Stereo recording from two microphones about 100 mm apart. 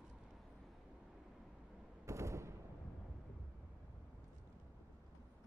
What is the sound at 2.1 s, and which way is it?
Gunshot, 30° right (ahead or behind).